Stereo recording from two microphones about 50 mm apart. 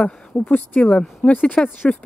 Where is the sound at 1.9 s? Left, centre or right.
Centre.